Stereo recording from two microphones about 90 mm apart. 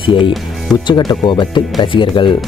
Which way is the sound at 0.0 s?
65° left (ahead or behind).